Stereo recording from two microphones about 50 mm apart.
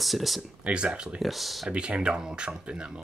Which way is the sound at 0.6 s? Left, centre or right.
Right.